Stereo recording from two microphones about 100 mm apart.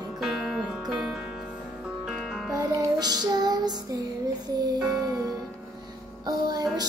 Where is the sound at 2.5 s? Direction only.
35° right (ahead or behind).